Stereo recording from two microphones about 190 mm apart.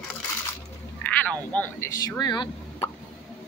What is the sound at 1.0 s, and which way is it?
Speech, 10° left (ahead or behind).